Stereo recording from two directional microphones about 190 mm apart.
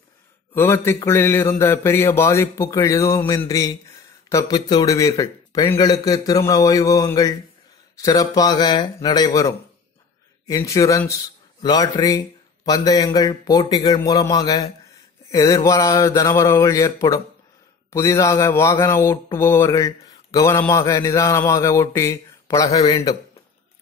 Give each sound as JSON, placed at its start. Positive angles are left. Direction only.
{"t": 0.6, "sound": "speech", "side_deg": 15}
{"t": 22.7, "sound": "a man's voice", "side_deg": 30}